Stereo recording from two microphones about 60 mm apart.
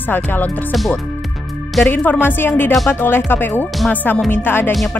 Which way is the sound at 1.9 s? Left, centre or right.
Left.